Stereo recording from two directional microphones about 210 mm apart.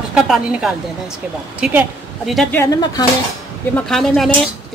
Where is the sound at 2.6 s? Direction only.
20° left (ahead or behind).